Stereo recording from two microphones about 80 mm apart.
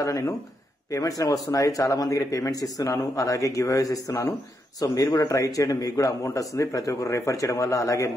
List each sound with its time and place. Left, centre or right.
0.0 s a man's voice: left